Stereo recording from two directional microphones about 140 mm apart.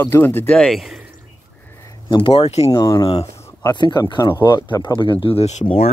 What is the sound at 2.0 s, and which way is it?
Speech, 35° left (ahead or behind).